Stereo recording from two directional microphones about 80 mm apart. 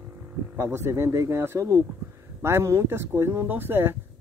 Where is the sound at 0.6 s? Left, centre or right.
Right.